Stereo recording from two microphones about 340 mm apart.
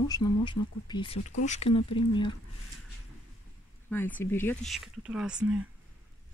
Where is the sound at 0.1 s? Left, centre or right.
Centre.